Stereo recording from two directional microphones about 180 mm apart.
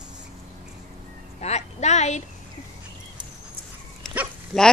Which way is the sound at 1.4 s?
40° left (ahead or behind).